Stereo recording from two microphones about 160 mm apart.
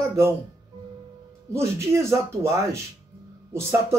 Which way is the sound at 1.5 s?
15° right (ahead or behind).